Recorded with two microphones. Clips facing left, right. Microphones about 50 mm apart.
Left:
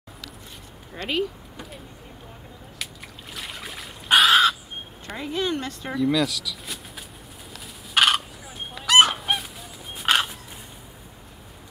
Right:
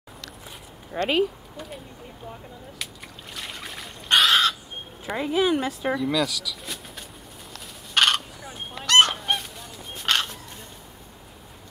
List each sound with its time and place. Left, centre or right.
1.0 s speech: centre
3.3 s crow: centre
5.0 s speech: centre
7.9 s goose: centre